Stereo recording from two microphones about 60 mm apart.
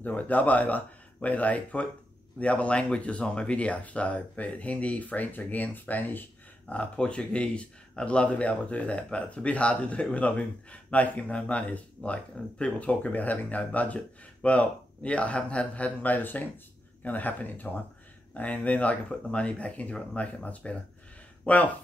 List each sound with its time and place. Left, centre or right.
0.0 s speech: left
6.7 s speech: left